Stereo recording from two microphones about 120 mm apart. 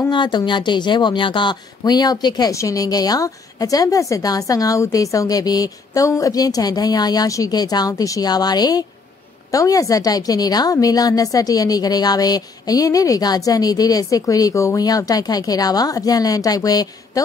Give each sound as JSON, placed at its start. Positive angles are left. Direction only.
{"t": 0.1, "sound": "speech", "side_deg": 40}